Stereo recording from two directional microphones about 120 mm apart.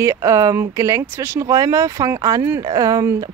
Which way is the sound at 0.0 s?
25° right (ahead or behind).